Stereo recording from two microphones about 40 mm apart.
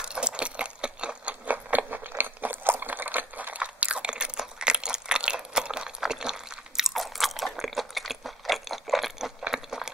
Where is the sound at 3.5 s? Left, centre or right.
Right; by 6.9 s centre.